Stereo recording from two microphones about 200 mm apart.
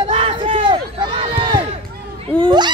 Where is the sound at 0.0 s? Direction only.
30° right (ahead or behind).